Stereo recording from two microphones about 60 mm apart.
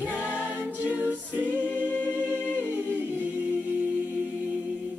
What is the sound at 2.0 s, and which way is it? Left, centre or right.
A capella, right.